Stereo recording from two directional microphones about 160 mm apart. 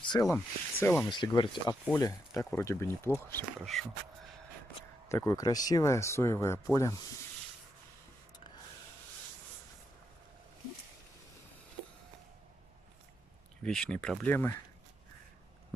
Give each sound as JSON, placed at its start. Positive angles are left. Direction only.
{"t": 0.0, "sound": "a sound", "side_deg": 30}
{"t": 0.3, "sound": "speech", "side_deg": 15}
{"t": 1.0, "sound": "speech", "side_deg": 30}
{"t": 5.0, "sound": "speech", "side_deg": 20}
{"t": 13.6, "sound": "speech", "side_deg": 5}